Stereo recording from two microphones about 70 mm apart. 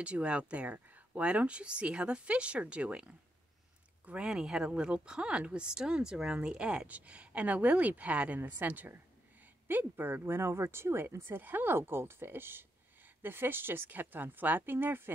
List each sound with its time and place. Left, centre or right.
0.0 s a woman's voice: centre